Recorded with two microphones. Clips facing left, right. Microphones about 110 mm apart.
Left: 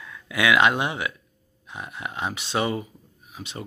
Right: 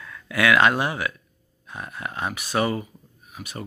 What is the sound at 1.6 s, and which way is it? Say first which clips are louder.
Speech: right 1 dB; 20° left (ahead or behind).